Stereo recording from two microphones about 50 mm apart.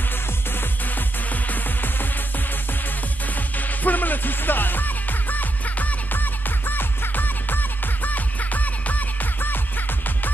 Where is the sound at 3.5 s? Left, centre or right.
Left.